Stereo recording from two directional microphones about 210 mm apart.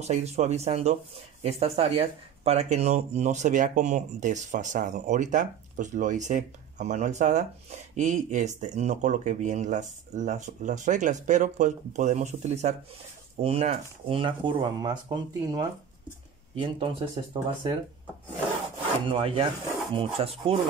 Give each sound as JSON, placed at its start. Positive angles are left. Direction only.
{"t": 0.0, "sound": "speech", "side_deg": -30}
{"t": 19.0, "sound": "speech", "side_deg": -25}